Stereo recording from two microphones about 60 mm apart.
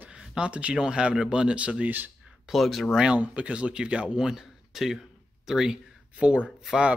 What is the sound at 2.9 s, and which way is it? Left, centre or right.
Speech, centre.